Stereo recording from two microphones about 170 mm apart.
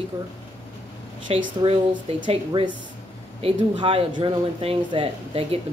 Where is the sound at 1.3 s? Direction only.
35° right (ahead or behind).